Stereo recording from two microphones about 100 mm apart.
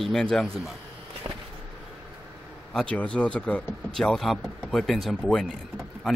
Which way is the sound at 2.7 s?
10° left (ahead or behind).